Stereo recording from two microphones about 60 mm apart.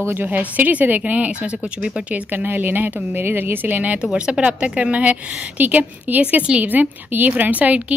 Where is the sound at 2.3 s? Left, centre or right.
Right.